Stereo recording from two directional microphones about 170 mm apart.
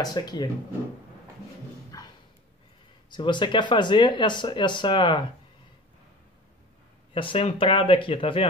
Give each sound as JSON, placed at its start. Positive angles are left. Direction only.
{"t": 0.0, "sound": "speech", "side_deg": 25}
{"t": 1.9, "sound": "a sound", "side_deg": 20}
{"t": 3.1, "sound": "speech", "side_deg": 25}
{"t": 7.2, "sound": "speech", "side_deg": 30}